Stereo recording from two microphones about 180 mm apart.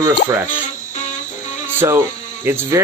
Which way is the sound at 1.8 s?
20° right (ahead or behind).